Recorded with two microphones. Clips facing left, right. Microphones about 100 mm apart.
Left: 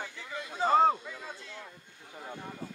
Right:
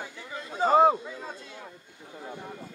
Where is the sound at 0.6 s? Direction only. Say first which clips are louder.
Right 4 dB; 15° right (ahead or behind).